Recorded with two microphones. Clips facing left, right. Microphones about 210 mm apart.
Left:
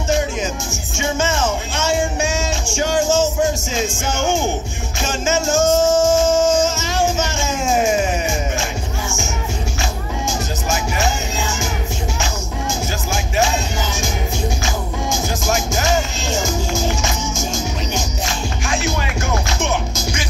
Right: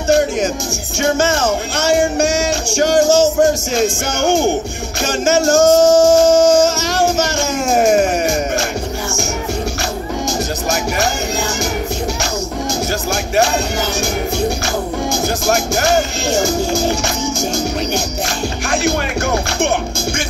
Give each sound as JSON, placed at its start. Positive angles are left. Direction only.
{"t": 1.0, "sound": "music", "side_deg": -70}
{"t": 5.8, "sound": "music", "side_deg": -35}
{"t": 6.5, "sound": "music", "side_deg": -75}
{"t": 15.4, "sound": "music", "side_deg": -65}
{"t": 16.4, "sound": "music", "side_deg": -35}
{"t": 18.7, "sound": "music", "side_deg": -65}